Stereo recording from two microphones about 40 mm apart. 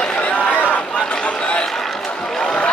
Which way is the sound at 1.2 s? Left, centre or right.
Left.